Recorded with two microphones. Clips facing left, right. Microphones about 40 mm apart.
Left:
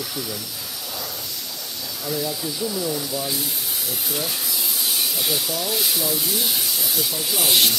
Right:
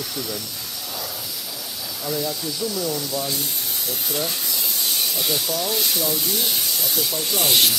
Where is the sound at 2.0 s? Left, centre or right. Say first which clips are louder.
Even; centre.